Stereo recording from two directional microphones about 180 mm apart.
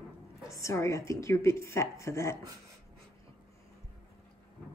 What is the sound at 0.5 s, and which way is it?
A woman's voice, 15° left (ahead or behind).